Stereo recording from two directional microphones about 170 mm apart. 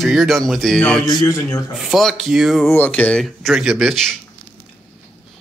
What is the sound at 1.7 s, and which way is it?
Speech, centre (ahead or behind).